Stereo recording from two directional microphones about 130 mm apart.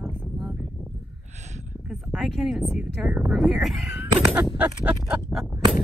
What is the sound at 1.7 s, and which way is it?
Speech, centre (ahead or behind).